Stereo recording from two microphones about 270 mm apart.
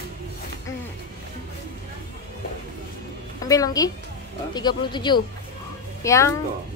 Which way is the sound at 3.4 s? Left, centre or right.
Centre.